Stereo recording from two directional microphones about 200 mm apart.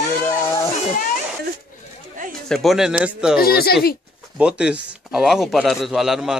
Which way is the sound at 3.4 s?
50° left (ahead or behind).